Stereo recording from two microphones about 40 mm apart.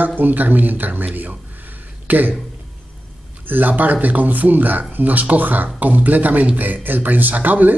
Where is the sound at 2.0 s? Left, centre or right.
Right.